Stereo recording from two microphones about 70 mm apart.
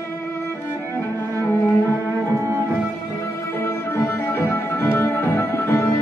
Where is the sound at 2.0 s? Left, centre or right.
Right.